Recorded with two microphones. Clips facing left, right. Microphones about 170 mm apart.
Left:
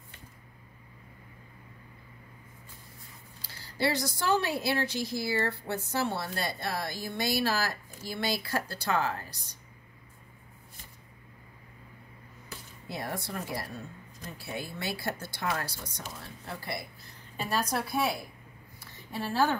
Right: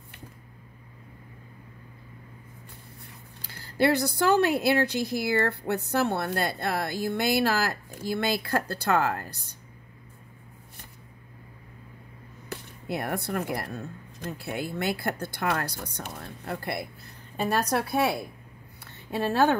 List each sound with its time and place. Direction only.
3.7 s speech: 60° right (ahead or behind)
12.4 s speech: 60° right (ahead or behind)
18.8 s a sound: 65° right (ahead or behind)